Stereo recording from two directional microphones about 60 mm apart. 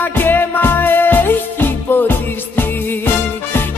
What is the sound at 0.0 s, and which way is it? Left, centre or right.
Music, left.